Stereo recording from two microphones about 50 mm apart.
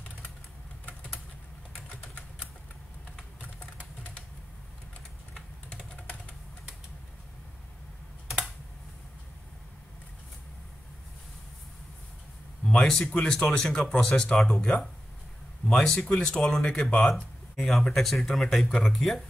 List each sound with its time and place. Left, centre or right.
5.7 s computer keyboard: left
12.7 s speech: centre
13.1 s speech: centre